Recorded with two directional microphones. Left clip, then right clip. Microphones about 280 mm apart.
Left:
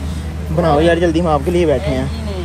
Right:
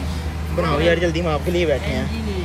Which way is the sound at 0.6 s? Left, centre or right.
Centre.